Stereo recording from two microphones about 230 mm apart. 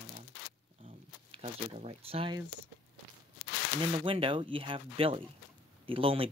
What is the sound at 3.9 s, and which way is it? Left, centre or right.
Speech, right.